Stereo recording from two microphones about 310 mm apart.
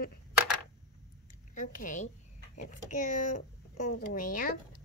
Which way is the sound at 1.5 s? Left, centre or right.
Left.